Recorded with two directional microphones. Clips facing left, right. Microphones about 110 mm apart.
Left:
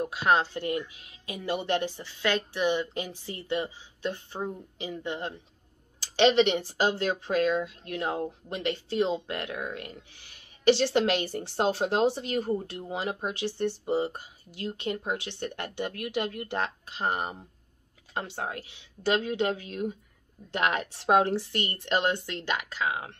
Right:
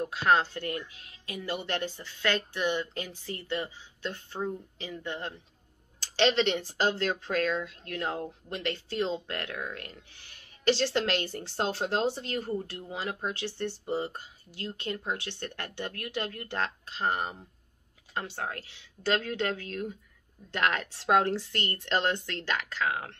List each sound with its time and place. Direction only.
0.0 s speech: 15° left (ahead or behind)